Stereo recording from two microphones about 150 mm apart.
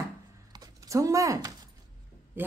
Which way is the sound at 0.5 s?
25° right (ahead or behind).